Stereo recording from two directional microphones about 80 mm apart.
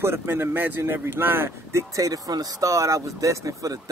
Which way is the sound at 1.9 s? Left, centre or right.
Right.